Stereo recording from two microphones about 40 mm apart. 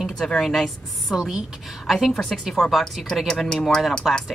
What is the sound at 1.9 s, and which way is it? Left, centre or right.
Speech, centre.